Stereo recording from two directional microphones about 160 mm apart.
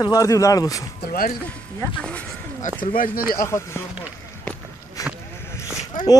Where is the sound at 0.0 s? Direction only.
20° left (ahead or behind).